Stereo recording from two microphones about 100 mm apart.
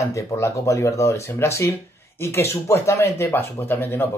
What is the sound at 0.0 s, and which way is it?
A man's voice, 30° left (ahead or behind).